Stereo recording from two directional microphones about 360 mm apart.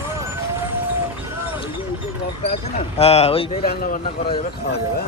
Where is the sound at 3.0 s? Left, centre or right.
Centre.